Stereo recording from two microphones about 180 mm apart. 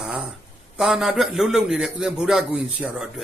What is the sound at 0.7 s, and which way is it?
A man's voice, centre (ahead or behind).